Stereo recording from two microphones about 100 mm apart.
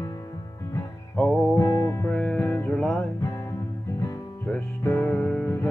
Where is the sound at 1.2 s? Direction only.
15° left (ahead or behind).